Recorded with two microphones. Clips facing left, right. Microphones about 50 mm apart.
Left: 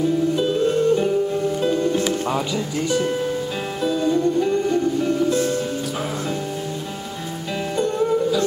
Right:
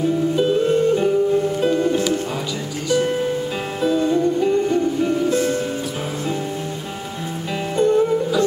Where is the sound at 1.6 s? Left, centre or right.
Right.